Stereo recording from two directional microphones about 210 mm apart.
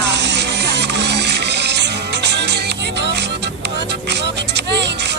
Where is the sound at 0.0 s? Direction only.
55° right (ahead or behind).